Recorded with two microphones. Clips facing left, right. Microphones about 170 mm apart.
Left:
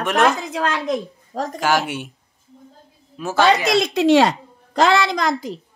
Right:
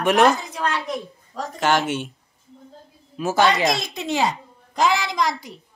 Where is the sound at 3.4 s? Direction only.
70° left (ahead or behind).